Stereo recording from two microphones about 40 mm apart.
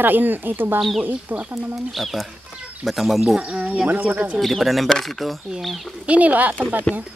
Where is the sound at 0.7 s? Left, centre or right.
Centre.